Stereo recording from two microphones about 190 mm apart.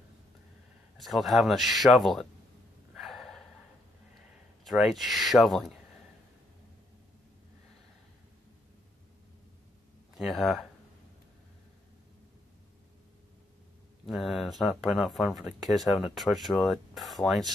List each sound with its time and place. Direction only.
0.9 s speech: centre (ahead or behind)
2.9 s snort: centre (ahead or behind)
4.6 s speech: centre (ahead or behind)
10.1 s speech: centre (ahead or behind)
14.0 s speech: centre (ahead or behind)